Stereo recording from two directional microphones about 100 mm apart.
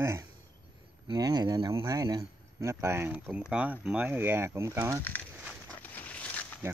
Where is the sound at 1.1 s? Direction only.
45° right (ahead or behind).